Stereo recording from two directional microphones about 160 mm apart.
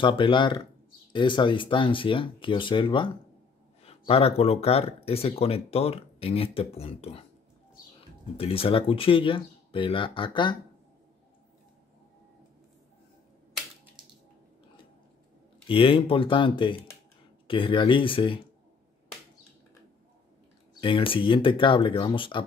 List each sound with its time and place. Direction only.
0.0 s speech: 30° left (ahead or behind)
8.4 s speech: 35° left (ahead or behind)
15.7 s speech: 35° left (ahead or behind)
20.8 s speech: 35° left (ahead or behind)